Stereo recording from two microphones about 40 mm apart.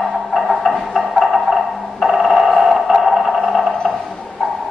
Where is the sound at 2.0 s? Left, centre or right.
Centre.